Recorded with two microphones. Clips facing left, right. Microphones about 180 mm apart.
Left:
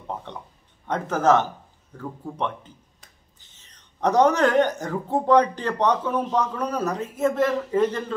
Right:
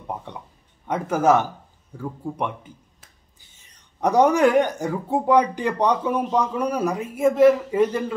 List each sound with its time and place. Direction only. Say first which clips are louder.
0.0 s speech: right 1 dB; 10° right (ahead or behind)